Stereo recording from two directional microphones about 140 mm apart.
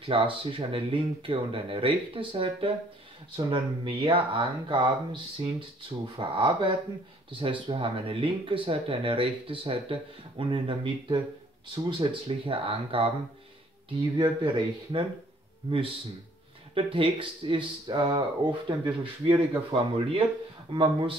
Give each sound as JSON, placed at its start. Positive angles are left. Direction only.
{"t": 0.0, "sound": "speech", "side_deg": -40}
{"t": 14.1, "sound": "speech", "side_deg": -35}
{"t": 16.7, "sound": "speech", "side_deg": -40}